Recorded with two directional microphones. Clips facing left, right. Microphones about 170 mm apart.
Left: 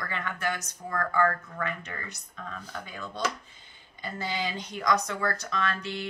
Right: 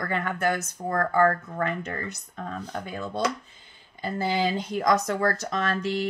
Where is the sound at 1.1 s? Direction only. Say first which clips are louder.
Right 4 dB; 35° right (ahead or behind).